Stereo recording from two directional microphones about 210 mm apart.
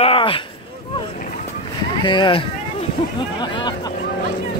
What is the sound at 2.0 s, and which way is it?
Speech, 20° left (ahead or behind).